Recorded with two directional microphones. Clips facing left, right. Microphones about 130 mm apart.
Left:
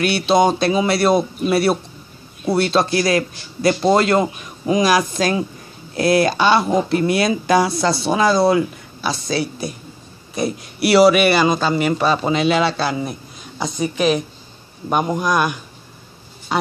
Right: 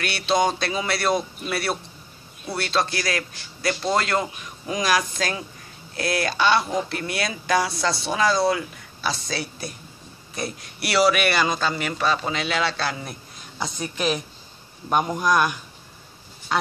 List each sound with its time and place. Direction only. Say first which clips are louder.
0.0 s a man's voice: left 7 dB; 10° left (ahead or behind)